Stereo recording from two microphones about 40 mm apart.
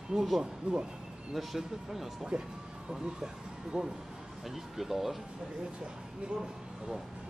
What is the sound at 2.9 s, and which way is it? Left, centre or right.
Speech, centre.